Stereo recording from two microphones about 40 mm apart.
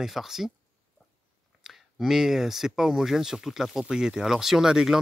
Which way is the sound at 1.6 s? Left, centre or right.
Centre.